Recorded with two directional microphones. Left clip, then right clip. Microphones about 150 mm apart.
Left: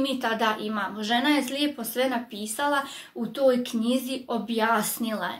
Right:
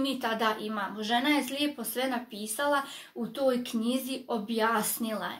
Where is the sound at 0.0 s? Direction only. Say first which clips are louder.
Left 4 dB; 5° left (ahead or behind).